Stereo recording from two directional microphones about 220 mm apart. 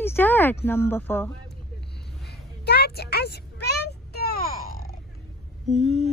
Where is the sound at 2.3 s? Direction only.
45° left (ahead or behind).